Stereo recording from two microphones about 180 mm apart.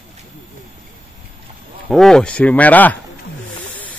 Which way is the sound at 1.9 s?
5° left (ahead or behind).